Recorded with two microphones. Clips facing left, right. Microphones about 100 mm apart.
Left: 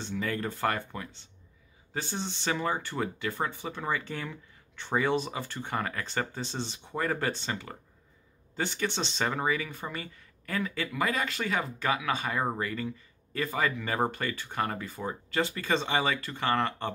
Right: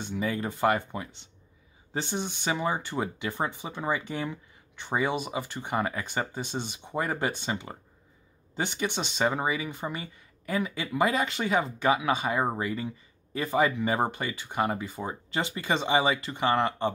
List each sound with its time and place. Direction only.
0.0 s speech: 15° right (ahead or behind)